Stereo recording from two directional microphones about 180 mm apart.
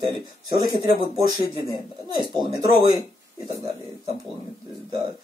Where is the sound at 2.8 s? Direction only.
20° right (ahead or behind).